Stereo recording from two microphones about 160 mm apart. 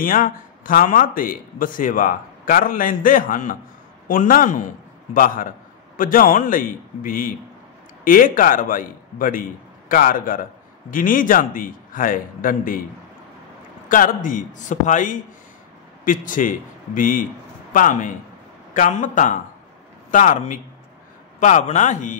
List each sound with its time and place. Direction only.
0.0 s a man's voice: 60° left (ahead or behind)
13.8 s a man's voice: 60° left (ahead or behind)